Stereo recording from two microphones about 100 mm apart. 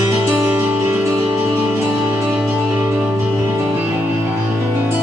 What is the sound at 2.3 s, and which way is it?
Music, 10° right (ahead or behind).